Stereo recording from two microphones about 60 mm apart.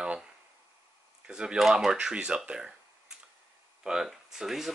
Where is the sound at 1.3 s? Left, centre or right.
Centre.